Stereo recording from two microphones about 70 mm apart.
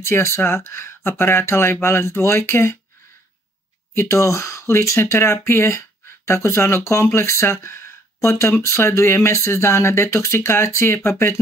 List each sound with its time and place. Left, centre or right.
0.0 s speech: left
3.9 s speech: left